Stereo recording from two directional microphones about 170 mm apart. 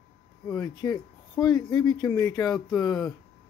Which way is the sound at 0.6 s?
20° left (ahead or behind).